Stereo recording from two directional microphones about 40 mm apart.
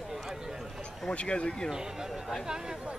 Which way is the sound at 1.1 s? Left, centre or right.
Left.